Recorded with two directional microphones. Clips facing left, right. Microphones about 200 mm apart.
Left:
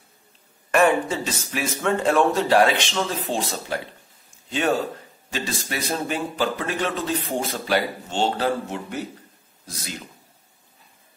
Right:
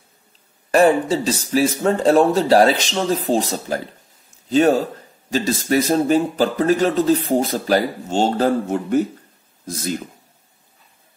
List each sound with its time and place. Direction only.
0.7 s a man's voice: 35° right (ahead or behind)